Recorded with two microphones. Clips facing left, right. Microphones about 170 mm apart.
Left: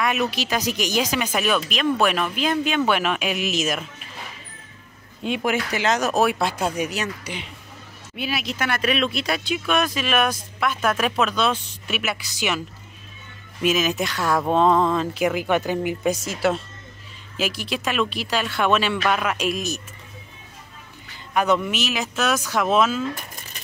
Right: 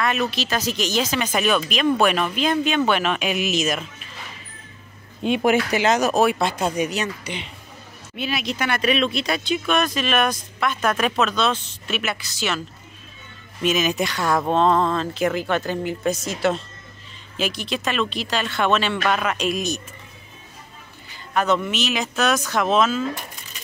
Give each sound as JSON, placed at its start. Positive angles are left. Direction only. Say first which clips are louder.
{"t": 0.0, "sound": "speech", "louder": "even", "side_deg": 10}
{"t": 5.2, "sound": "speech", "louder": "right 5 dB", "side_deg": -25}
{"t": 5.9, "sound": "speech", "louder": "right 1 dB", "side_deg": 0}
{"t": 21.3, "sound": "speech", "louder": "even", "side_deg": 10}